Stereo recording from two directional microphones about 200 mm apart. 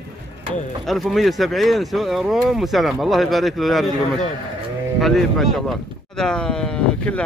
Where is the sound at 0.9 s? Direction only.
Centre (ahead or behind).